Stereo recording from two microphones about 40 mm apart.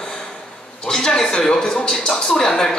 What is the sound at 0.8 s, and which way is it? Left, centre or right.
Speech, centre.